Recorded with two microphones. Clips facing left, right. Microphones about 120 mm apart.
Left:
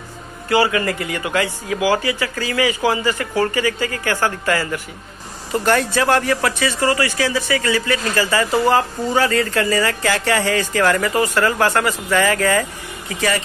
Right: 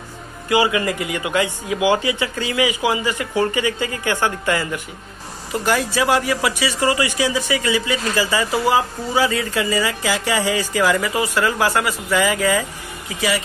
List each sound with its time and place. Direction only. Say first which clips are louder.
0.5 s speech: left 1 dB; 15° right (ahead or behind)
5.5 s speech: left 3 dB; 5° right (ahead or behind)